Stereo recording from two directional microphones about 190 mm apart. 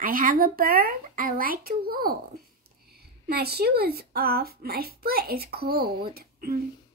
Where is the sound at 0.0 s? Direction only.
45° right (ahead or behind).